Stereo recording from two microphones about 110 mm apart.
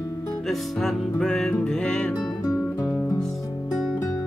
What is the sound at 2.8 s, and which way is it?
Music, 20° left (ahead or behind).